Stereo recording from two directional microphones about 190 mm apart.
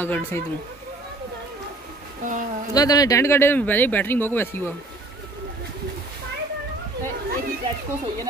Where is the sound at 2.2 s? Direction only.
45° right (ahead or behind).